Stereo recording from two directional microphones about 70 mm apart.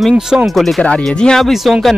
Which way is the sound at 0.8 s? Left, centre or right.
Centre.